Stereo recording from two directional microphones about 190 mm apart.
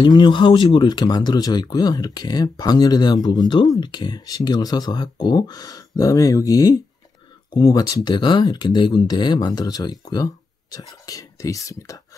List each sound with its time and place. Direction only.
0.0 s speech: 25° left (ahead or behind)